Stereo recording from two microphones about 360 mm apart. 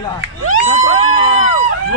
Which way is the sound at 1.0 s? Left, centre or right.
Left.